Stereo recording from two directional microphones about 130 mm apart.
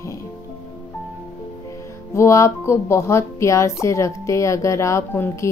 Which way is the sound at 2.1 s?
20° left (ahead or behind).